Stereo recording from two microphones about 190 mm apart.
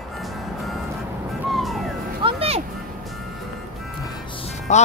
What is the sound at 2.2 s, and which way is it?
Music, 30° right (ahead or behind).